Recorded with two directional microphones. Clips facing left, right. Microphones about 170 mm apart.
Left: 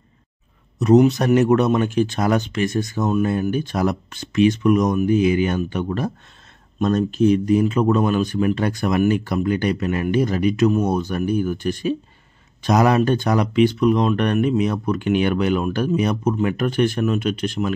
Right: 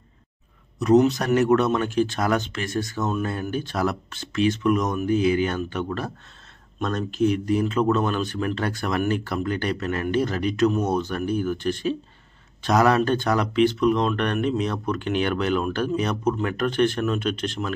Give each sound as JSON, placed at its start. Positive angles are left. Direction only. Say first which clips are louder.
{"t": 0.7, "sound": "speech", "louder": "left 3 dB", "side_deg": 20}